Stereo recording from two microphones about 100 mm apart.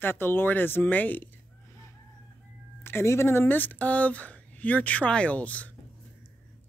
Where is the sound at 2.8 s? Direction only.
25° left (ahead or behind).